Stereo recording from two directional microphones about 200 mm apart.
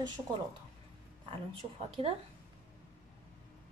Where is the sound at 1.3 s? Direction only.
25° right (ahead or behind).